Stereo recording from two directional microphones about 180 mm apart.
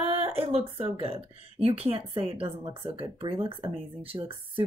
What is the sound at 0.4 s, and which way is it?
Speech, 35° right (ahead or behind).